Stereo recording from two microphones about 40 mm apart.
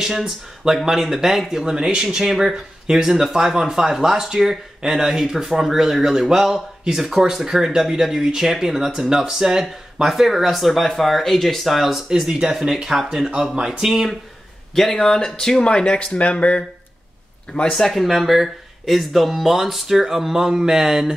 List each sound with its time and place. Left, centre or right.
0.8 s speech: centre
12.3 s speech: centre
14.8 s speech: centre; by 16.6 s left
17.6 s speech: centre
18.0 s speech: centre